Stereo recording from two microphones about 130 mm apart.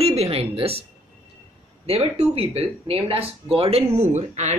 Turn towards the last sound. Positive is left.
turn(degrees=-60)  # may be behind; listen again after turning